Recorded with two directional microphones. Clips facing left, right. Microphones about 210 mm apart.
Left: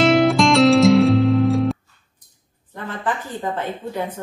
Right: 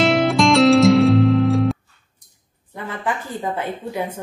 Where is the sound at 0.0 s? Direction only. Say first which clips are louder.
Left 1 dB; centre (ahead or behind).